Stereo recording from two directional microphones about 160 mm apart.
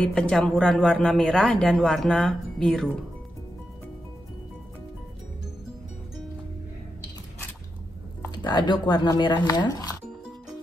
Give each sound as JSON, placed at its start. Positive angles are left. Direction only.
{"t": 0.0, "sound": "speech", "side_deg": 5}
{"t": 8.4, "sound": "speech", "side_deg": 30}